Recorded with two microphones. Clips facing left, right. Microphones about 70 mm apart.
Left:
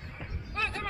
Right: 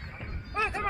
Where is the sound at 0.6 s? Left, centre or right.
Centre.